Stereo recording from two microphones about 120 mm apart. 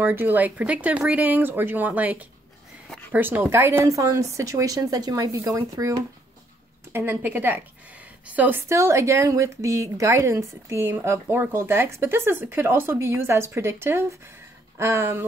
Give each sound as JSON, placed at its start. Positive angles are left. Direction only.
{"t": 0.0, "sound": "a woman's voice", "side_deg": -15}